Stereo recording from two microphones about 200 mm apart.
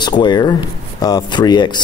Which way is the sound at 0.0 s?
20° left (ahead or behind).